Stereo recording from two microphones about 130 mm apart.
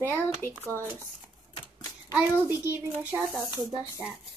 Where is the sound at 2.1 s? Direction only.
10° right (ahead or behind).